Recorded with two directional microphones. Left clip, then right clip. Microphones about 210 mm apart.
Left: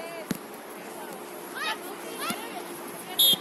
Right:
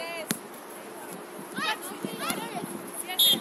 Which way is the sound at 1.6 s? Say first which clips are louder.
Right 2 dB; 5° right (ahead or behind).